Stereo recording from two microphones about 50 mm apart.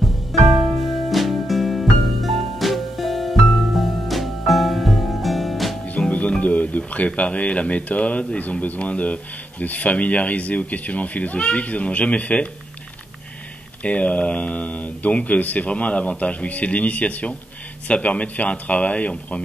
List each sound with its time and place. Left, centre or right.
0.0 s music: centre
5.9 s music: left
6.9 s speech: left
13.8 s speech: left